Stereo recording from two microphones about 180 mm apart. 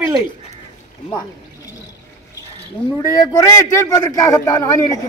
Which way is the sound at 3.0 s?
20° left (ahead or behind).